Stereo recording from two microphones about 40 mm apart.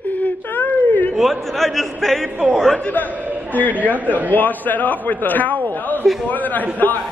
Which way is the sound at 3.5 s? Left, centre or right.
Left.